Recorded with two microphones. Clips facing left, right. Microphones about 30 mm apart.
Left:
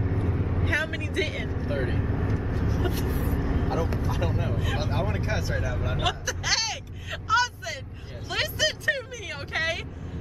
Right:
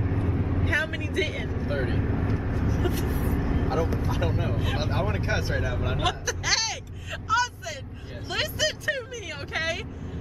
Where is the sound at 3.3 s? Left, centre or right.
Centre.